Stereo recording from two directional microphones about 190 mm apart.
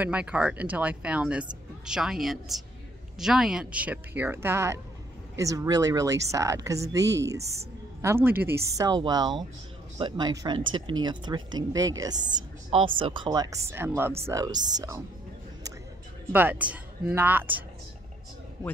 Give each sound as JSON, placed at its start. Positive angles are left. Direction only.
{"t": 0.0, "sound": "a woman's voice", "side_deg": -5}
{"t": 16.3, "sound": "a woman's voice", "side_deg": -10}